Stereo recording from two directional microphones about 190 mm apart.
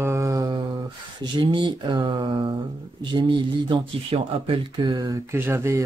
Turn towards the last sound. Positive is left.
turn(degrees=-15)  # may be behind; listen again after turning